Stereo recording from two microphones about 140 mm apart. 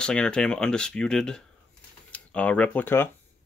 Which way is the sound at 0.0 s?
5° left (ahead or behind).